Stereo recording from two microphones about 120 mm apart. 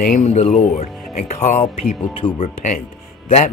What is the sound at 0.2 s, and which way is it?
Speech, 55° left (ahead or behind).